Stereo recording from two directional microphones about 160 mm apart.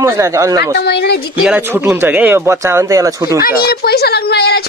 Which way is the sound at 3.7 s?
80° left.